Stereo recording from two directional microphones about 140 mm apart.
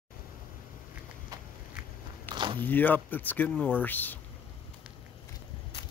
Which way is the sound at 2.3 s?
35° right (ahead or behind).